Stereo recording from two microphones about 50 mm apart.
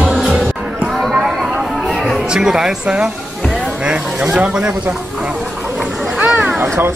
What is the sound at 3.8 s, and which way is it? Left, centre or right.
Speech, right.